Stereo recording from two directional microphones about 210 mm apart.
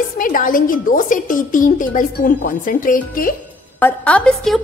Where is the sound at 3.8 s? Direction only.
5° left (ahead or behind).